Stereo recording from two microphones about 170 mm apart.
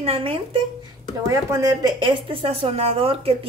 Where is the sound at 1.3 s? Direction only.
20° right (ahead or behind).